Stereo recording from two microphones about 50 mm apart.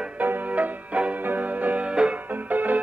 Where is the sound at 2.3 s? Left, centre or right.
Right.